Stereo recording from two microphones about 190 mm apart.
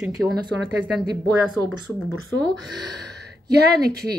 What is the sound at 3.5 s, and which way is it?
Speech, 60° right (ahead or behind).